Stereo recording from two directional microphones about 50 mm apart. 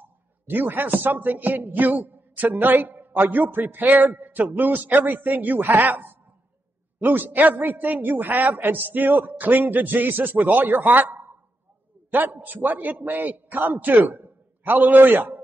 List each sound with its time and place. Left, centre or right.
0.0 s a man's voice: right